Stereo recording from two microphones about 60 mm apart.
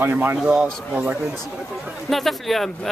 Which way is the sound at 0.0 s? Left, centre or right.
Right.